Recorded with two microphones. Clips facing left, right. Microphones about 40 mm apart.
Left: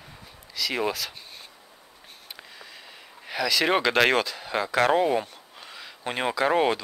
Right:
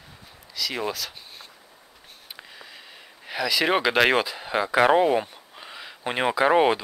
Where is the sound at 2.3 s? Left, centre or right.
Centre.